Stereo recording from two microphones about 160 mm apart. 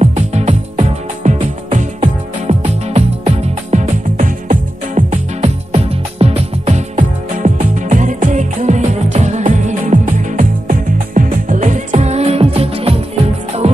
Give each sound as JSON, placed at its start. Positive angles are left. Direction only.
{"t": 0.0, "sound": "music", "side_deg": -45}